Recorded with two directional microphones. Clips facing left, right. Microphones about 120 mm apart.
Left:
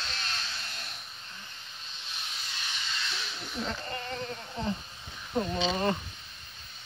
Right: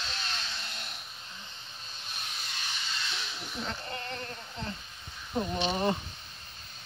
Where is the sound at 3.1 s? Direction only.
Centre (ahead or behind).